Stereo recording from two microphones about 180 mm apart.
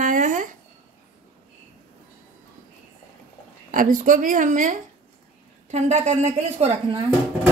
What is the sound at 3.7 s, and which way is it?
A woman's voice, 50° right (ahead or behind).